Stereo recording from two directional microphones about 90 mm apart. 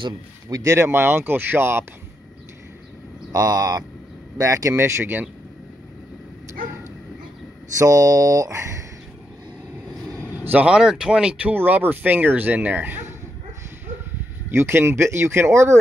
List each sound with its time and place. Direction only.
0.5 s speech: 45° right (ahead or behind)
0.7 s speech: 25° right (ahead or behind)
3.3 s speech: 45° right (ahead or behind); by 5.3 s 20° right (ahead or behind)
7.8 s speech: 40° right (ahead or behind)
10.4 s speech: 15° right (ahead or behind)
11.5 s speech: 20° right (ahead or behind)
14.5 s speech: 25° right (ahead or behind)